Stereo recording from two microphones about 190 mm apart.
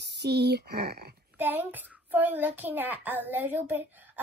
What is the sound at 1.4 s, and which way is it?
A child's voice, 10° right (ahead or behind).